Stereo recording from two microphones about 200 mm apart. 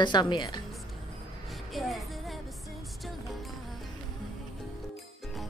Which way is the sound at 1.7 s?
Centre (ahead or behind).